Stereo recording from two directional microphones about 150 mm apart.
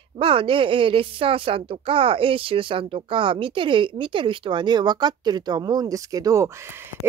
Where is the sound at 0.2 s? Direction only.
35° right (ahead or behind).